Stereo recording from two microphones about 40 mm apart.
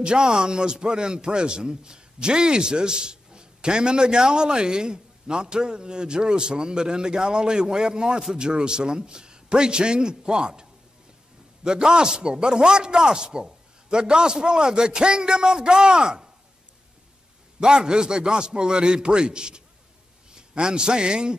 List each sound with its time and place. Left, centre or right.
0.0 s a man's voice: right
17.6 s a man's voice: right